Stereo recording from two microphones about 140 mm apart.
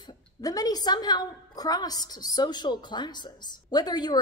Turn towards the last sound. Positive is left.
turn(degrees=30)  # may be behind; listen again after turning